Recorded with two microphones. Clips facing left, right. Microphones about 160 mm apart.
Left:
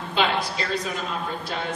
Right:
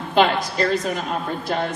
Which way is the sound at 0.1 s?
50° right (ahead or behind).